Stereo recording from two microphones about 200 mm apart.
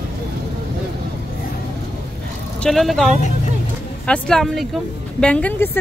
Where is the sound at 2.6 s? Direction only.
Centre (ahead or behind).